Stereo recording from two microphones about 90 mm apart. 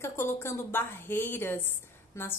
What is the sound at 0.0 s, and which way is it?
A woman's voice, 30° left (ahead or behind).